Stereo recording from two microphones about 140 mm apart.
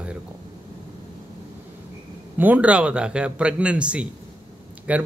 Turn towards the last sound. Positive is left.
turn(degrees=-10)  # may be behind; listen again after turning